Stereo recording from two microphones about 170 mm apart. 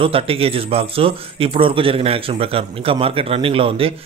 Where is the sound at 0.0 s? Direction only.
35° right (ahead or behind).